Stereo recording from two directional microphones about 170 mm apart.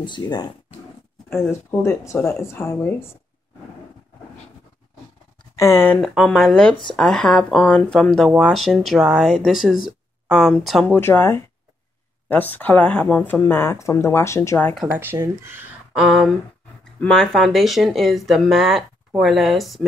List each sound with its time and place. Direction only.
0.0 s speech: 25° left (ahead or behind)
1.3 s speech: 15° left (ahead or behind)
5.6 s speech: 15° left (ahead or behind)
5.9 s speech: centre (ahead or behind)
10.9 s speech: 10° left (ahead or behind)
15.0 s speech: 15° right (ahead or behind)